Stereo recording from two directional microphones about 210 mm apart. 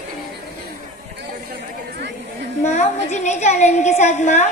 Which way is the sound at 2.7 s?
35° left (ahead or behind).